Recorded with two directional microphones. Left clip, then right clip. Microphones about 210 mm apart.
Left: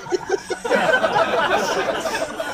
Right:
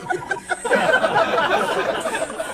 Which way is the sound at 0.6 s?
Centre (ahead or behind).